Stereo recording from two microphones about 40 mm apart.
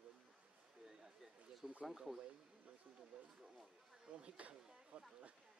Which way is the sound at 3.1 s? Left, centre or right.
Right.